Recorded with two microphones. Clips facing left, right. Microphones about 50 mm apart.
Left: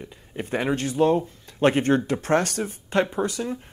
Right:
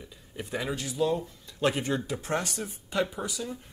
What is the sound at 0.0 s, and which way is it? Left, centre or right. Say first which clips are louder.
Speech: left 7 dB; left.